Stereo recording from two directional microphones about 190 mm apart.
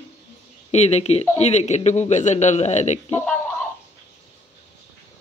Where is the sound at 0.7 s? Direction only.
35° left (ahead or behind).